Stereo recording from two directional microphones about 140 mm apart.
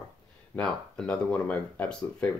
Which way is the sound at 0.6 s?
5° left (ahead or behind).